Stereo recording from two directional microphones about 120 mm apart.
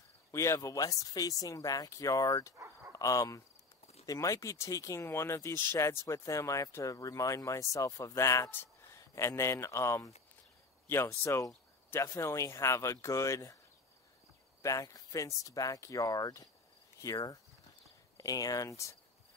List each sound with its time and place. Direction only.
0.3 s speech: 25° left (ahead or behind)
14.6 s speech: 25° left (ahead or behind)
17.0 s cricket: 30° left (ahead or behind)
18.1 s speech: 30° left (ahead or behind)